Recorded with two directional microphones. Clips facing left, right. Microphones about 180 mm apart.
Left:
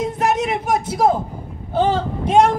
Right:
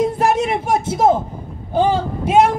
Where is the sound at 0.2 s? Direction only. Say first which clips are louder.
Right 2 dB; 30° right (ahead or behind).